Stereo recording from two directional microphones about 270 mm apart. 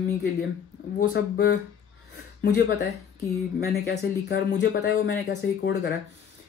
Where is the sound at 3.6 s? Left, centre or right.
Left.